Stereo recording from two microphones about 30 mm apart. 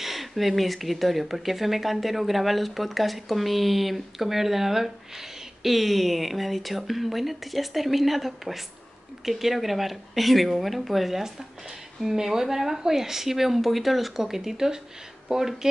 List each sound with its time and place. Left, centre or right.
0.0 s speech: centre